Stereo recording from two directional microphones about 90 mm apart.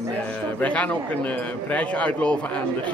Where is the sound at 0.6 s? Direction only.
15° left (ahead or behind).